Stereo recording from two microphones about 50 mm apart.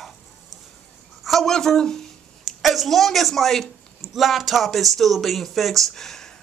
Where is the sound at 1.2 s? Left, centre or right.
Centre.